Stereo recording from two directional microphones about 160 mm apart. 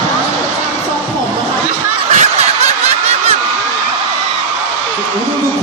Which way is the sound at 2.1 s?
45° right (ahead or behind).